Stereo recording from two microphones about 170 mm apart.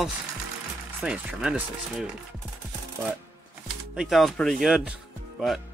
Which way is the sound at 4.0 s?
Centre (ahead or behind).